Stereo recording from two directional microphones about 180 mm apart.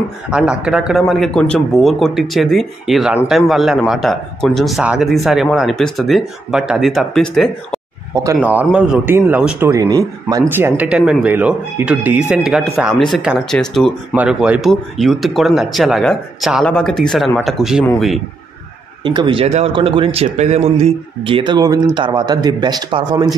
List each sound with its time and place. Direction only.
0.3 s speech: 5° right (ahead or behind)
8.1 s speech: 15° right (ahead or behind)
9.7 s a man's voice: 20° right (ahead or behind); by 18.2 s centre (ahead or behind)
19.0 s a man's voice: 25° right (ahead or behind)